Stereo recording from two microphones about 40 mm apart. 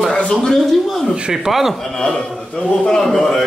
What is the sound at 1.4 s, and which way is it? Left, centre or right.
Speech, centre.